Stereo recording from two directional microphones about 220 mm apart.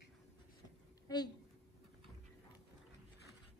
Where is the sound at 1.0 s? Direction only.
20° left (ahead or behind).